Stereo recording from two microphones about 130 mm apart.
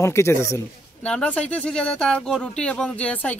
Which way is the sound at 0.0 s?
20° left (ahead or behind).